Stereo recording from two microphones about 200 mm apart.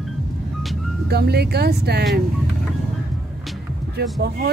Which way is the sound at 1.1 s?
55° right (ahead or behind).